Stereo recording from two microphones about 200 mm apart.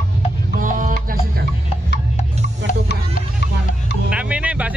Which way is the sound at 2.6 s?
65° right (ahead or behind).